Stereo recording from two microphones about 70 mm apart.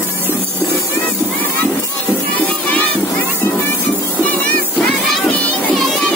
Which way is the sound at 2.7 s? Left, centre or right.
Left.